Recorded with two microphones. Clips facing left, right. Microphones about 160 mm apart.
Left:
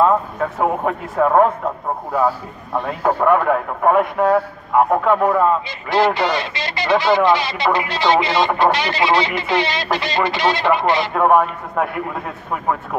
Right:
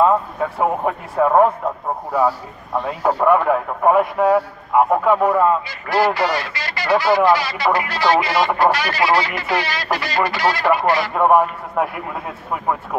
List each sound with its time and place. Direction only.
0.6 s speech: 5° right (ahead or behind)
3.0 s speech: 5° right (ahead or behind)
5.7 s speech: 20° left (ahead or behind)
11.1 s speech: 5° right (ahead or behind)